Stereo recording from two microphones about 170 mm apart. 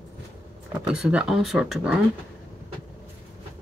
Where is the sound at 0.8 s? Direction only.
5° right (ahead or behind).